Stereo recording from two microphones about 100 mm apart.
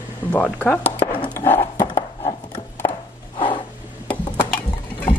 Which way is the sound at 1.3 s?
20° left (ahead or behind).